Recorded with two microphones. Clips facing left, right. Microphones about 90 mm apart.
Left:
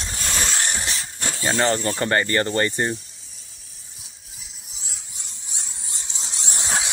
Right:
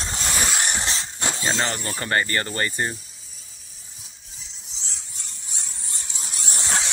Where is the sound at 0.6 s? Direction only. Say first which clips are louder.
Right 1 dB; 30° right (ahead or behind).